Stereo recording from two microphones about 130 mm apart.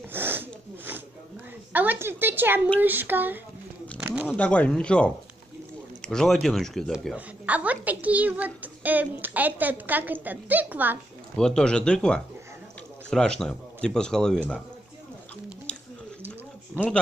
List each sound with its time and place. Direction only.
0.1 s snort: 15° right (ahead or behind)
1.7 s a woman's voice: 15° right (ahead or behind)
4.4 s a man's voice: 10° left (ahead or behind)
7.2 s a child's voice: 10° right (ahead or behind)
11.3 s a man's voice: 5° left (ahead or behind)
15.7 s a sound: 5° left (ahead or behind)